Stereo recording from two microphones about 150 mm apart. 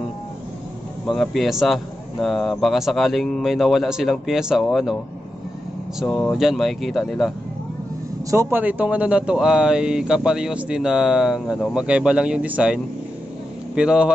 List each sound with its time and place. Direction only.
1.0 s speech: centre (ahead or behind)
6.0 s speech: 10° left (ahead or behind)
6.3 s speech: centre (ahead or behind)
8.3 s speech: 15° right (ahead or behind)